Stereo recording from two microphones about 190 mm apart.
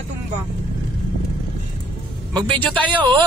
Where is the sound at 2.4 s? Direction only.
5° left (ahead or behind).